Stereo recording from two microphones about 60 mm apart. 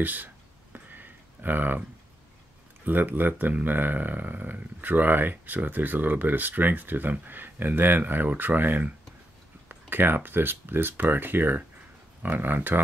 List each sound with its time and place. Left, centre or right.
0.0 s speech: right
0.7 s a sound: right
2.8 s speech: right